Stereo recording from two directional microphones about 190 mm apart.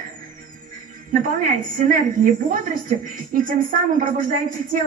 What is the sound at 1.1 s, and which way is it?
A woman's voice, 45° right (ahead or behind).